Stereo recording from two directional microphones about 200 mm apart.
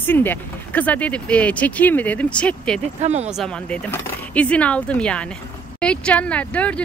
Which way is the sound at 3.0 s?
35° right (ahead or behind).